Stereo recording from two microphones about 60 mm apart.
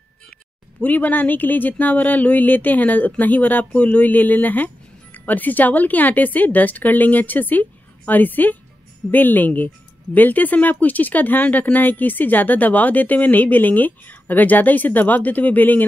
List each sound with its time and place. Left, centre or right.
0.7 s speech: left